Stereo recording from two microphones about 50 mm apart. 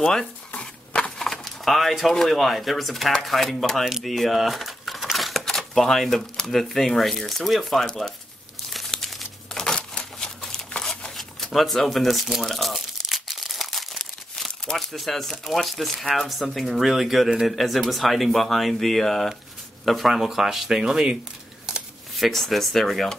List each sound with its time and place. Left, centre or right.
0.0 s speech: centre
3.8 s speech: centre
4.1 s a sound: centre
5.4 s speech: centre
7.8 s speech: centre
8.7 s crumpling: centre
11.1 s speech: centre
12.7 s crumpling: centre
14.9 s speech: centre
22.2 s speech: centre